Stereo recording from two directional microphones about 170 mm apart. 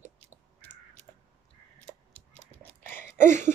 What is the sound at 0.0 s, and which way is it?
Crow, 10° right (ahead or behind).